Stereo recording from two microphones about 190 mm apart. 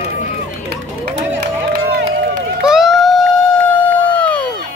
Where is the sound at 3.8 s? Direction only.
10° left (ahead or behind).